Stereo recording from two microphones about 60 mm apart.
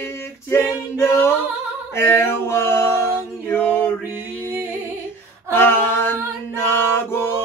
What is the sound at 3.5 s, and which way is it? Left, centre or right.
Mantra, left.